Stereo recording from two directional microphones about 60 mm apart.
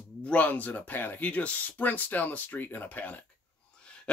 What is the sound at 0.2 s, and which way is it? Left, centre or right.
Speech, left.